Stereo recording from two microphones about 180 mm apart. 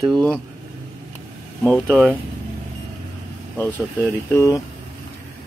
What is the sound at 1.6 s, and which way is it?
Speech, 5° left (ahead or behind).